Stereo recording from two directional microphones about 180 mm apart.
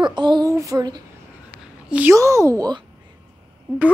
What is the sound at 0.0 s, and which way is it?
Speech, 25° right (ahead or behind).